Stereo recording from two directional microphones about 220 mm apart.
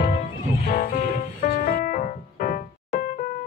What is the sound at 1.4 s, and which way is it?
Music, 40° left (ahead or behind).